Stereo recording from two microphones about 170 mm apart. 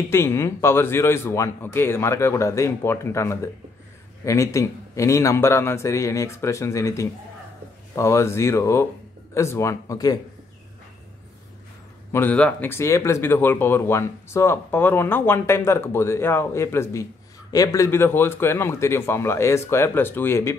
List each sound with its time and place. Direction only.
0.1 s speech: 15° left (ahead or behind)
12.1 s speech: 10° left (ahead or behind)